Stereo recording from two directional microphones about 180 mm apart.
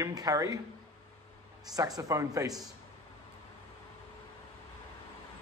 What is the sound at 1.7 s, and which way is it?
Speech, 20° right (ahead or behind).